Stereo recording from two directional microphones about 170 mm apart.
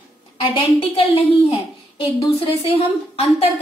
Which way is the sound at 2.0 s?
35° left (ahead or behind).